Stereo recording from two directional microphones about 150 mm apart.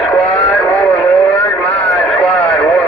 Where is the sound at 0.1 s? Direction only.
10° left (ahead or behind).